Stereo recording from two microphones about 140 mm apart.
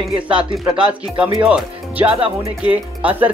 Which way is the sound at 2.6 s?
10° right (ahead or behind).